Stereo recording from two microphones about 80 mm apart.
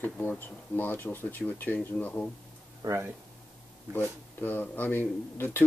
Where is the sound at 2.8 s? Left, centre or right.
Right.